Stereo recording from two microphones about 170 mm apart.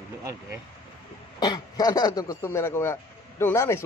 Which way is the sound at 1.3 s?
25° left (ahead or behind).